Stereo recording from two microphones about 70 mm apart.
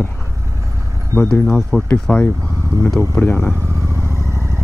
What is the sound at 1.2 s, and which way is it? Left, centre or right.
Speech, centre.